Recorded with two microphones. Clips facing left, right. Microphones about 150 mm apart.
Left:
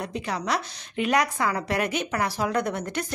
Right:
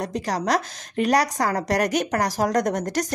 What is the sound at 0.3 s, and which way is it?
Speech, 40° right (ahead or behind).